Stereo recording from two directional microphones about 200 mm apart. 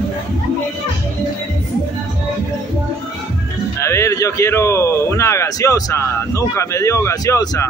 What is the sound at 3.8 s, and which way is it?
Speech, 15° left (ahead or behind).